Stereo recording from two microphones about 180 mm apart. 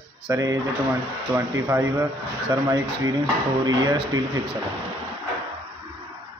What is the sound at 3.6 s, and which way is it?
Speech, 25° right (ahead or behind).